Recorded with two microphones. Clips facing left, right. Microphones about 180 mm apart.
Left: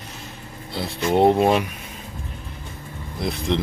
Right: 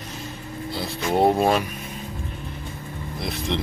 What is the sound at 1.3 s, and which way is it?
Speech, 20° left (ahead or behind).